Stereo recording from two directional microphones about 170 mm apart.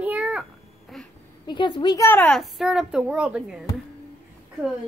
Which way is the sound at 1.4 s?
25° left (ahead or behind).